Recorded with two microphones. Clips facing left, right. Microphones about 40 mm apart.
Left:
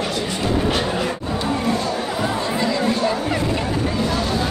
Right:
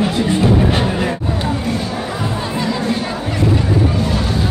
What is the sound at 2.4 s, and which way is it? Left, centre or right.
Chatter, centre.